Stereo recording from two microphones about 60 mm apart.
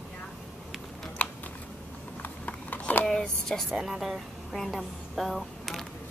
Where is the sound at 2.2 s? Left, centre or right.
Left.